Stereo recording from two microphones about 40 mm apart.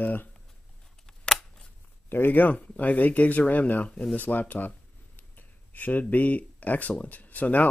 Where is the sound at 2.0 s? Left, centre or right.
Left.